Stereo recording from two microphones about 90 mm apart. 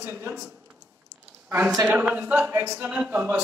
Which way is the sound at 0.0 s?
25° right (ahead or behind).